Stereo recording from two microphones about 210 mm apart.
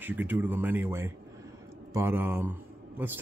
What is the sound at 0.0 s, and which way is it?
Speech, 10° right (ahead or behind).